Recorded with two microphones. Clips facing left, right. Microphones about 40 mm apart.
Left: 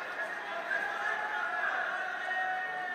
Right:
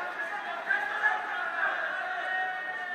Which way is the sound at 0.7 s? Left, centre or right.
Right.